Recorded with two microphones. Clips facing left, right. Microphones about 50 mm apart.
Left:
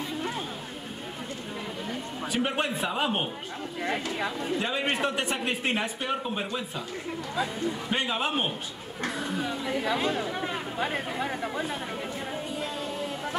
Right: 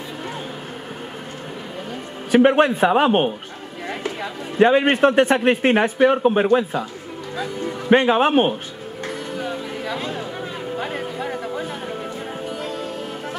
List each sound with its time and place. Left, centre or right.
2.3 s a man's voice: right
4.6 s a man's voice: right
7.9 s a man's voice: right
9.8 s speech: centre